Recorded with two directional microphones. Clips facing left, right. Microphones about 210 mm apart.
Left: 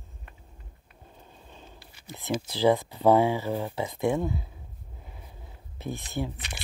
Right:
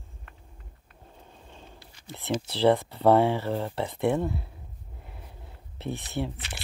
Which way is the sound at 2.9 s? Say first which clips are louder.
Even; 5° left (ahead or behind).